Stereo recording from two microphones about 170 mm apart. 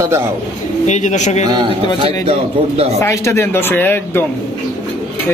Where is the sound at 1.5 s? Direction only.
25° right (ahead or behind).